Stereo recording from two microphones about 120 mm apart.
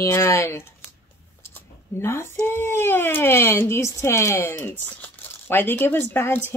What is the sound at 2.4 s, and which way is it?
Speech, 20° left (ahead or behind).